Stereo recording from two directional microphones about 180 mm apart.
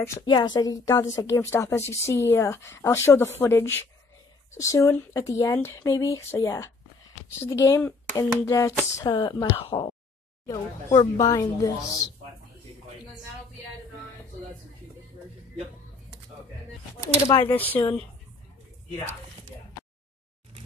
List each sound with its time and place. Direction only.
0.2 s a woman's voice: 25° left (ahead or behind)
17.3 s a woman's voice: 10° left (ahead or behind)